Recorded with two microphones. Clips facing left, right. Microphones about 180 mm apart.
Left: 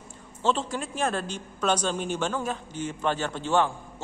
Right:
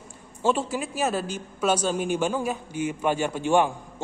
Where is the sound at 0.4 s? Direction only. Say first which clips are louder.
Right 2 dB; 10° right (ahead or behind).